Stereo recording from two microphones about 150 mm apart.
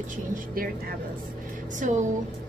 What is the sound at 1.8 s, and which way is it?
Speech, 55° right (ahead or behind).